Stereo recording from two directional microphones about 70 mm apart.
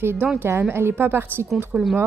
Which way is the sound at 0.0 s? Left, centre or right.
Right.